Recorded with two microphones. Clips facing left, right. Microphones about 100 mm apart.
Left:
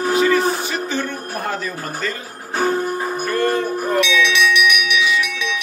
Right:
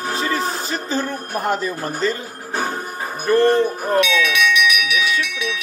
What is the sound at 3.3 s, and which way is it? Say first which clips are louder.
Music: right 6 dB; 30° right (ahead or behind).